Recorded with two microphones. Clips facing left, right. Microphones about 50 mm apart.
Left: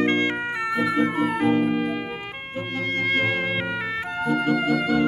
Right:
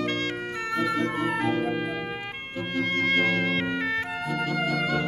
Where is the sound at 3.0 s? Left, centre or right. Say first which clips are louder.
Left 1 dB; centre.